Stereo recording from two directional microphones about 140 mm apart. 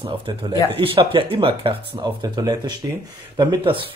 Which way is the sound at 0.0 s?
35° right (ahead or behind).